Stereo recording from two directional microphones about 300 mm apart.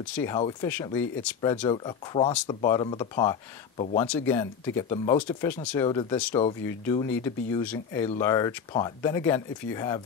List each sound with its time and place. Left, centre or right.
0.0 s speech: centre